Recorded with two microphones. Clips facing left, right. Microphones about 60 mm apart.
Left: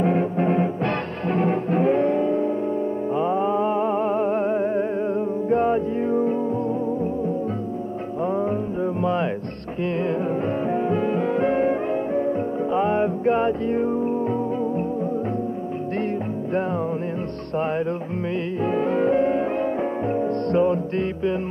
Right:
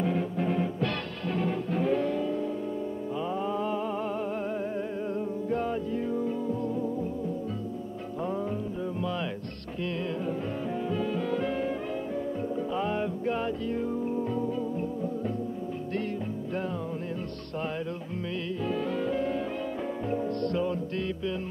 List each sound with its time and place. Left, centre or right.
0.0 s music: left
8.3 s music: left
10.7 s music: left
18.6 s music: left